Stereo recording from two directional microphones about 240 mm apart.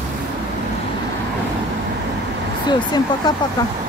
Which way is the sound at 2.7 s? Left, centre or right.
Centre.